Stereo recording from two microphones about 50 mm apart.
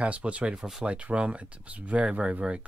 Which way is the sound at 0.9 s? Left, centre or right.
Right.